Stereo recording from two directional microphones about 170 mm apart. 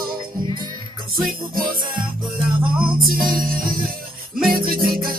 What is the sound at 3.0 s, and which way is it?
Music, 55° right (ahead or behind).